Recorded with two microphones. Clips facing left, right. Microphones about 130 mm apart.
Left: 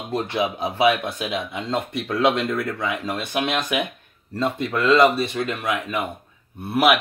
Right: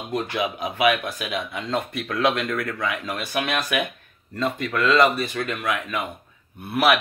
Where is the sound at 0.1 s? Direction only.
25° left (ahead or behind).